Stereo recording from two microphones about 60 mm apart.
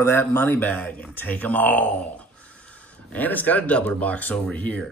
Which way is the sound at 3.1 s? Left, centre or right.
Left.